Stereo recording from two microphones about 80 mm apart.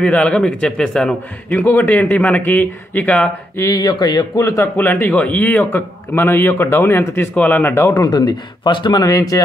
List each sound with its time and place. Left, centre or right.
0.0 s a man's voice: centre
1.5 s a man's voice: left
3.7 s speech: left
4.4 s speech: left
4.7 s a man's voice: left
7.7 s speech: left
8.1 s speech: left
9.0 s speech: left